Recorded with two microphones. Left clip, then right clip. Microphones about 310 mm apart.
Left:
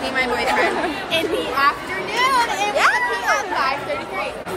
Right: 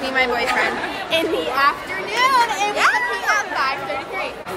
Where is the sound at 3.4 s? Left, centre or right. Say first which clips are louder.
Even; centre.